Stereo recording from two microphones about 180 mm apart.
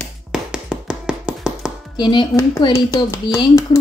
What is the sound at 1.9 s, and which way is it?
Speech, 25° left (ahead or behind).